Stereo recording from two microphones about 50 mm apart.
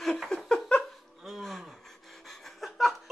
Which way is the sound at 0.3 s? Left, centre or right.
Centre.